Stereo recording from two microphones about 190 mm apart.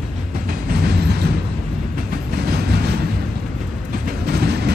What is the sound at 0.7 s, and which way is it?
Train, 60° right (ahead or behind).